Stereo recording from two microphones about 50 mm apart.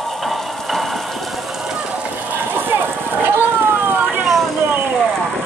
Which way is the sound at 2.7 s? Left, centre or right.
Right.